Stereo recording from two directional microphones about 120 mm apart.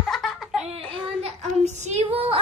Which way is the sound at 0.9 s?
60° right (ahead or behind).